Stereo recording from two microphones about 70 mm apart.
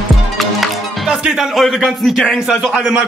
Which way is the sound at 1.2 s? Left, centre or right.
Centre.